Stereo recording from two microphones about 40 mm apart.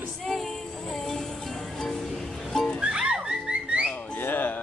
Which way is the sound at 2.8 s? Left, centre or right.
Right.